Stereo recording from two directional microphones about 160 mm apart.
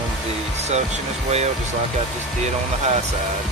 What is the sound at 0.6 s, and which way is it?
Speech, 45° right (ahead or behind).